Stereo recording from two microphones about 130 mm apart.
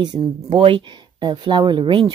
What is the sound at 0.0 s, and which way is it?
Speech, 35° right (ahead or behind).